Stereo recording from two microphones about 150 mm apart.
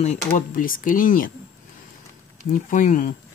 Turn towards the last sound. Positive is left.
turn(degrees=60)  # may be behind; listen again after turning